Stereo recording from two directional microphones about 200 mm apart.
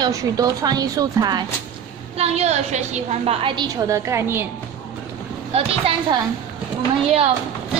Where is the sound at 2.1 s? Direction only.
30° right (ahead or behind); by 4.4 s 15° right (ahead or behind).